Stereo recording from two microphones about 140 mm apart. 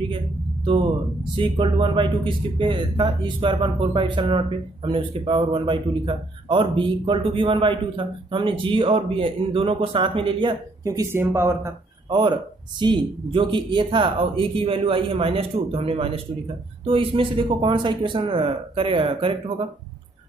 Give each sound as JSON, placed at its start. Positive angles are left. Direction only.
{"t": 1.3, "sound": "a man's voice", "side_deg": -35}
{"t": 10.8, "sound": "speech", "side_deg": -25}
{"t": 12.1, "sound": "a man's voice", "side_deg": -35}